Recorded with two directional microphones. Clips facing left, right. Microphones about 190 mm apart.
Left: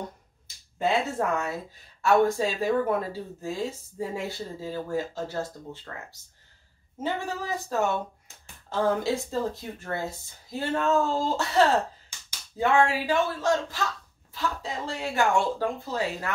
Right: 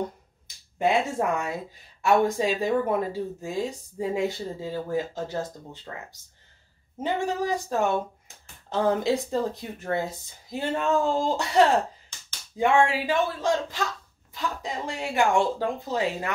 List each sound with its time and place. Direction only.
0.7 s speech: 15° right (ahead or behind)
7.0 s speech: 15° right (ahead or behind)